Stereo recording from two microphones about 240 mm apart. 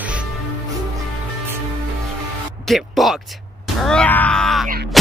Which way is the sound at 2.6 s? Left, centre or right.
Centre.